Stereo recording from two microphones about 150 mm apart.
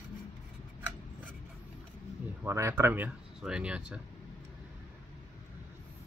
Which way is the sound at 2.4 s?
15° right (ahead or behind).